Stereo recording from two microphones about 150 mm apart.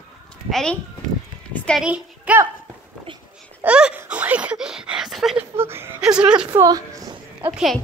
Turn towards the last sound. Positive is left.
turn(degrees=0)  # may be behind; listen again after turning